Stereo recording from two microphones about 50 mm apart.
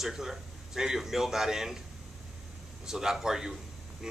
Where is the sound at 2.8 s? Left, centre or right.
Centre.